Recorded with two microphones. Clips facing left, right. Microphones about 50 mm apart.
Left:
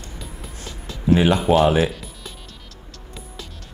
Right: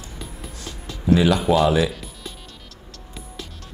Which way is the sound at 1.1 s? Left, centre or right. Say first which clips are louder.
Left 1 dB; left.